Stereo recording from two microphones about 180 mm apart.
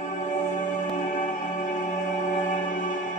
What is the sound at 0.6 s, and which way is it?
Music, 45° left (ahead or behind).